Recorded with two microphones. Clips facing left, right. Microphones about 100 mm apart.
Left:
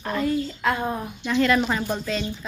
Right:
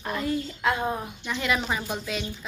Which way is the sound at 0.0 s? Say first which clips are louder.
Left 4 dB; 15° right (ahead or behind).